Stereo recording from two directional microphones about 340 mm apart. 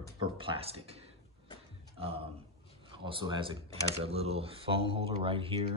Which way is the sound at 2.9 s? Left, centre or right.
Centre.